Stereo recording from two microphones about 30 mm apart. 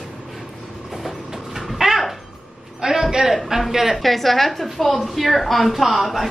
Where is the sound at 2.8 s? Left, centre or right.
Centre.